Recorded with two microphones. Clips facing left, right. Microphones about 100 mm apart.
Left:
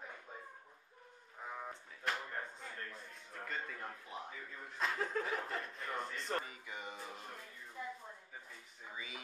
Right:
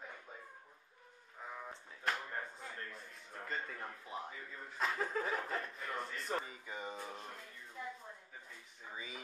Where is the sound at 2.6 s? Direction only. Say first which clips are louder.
Even; 20° right (ahead or behind).